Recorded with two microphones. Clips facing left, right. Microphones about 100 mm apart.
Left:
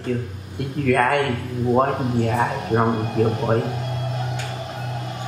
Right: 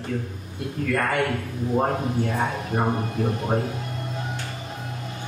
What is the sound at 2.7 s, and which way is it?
Speech, 70° left (ahead or behind).